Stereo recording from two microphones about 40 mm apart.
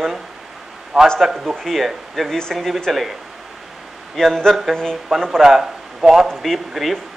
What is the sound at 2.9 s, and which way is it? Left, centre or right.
Speech, centre.